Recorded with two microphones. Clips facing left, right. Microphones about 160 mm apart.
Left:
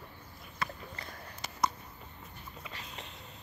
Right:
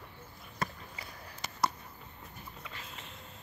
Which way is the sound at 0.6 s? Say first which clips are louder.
Right 1 dB; 45° right (ahead or behind).